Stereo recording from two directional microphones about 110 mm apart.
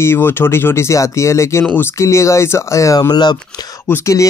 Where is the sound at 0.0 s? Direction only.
20° left (ahead or behind); by 3.3 s 40° left (ahead or behind).